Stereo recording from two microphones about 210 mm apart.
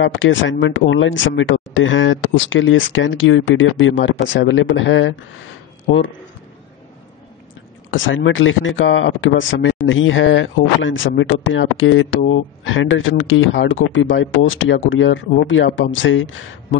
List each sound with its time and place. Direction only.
0.0 s speech: 65° left (ahead or behind)
7.9 s speech: 65° left (ahead or behind)